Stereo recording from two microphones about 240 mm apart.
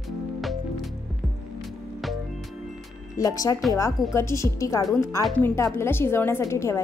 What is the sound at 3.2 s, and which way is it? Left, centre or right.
Speech, centre.